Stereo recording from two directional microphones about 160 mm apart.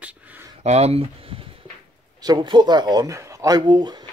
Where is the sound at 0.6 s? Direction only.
40° right (ahead or behind); by 4.1 s 25° right (ahead or behind).